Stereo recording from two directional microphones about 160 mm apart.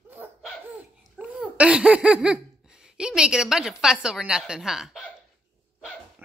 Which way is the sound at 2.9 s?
5° right (ahead or behind).